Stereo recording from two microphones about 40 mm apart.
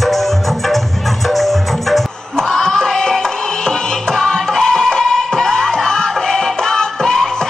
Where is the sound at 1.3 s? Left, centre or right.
Centre.